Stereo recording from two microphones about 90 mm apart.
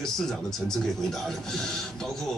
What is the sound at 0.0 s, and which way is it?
A man's voice, 5° left (ahead or behind).